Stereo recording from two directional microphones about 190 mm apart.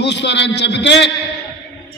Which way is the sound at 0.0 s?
65° left (ahead or behind).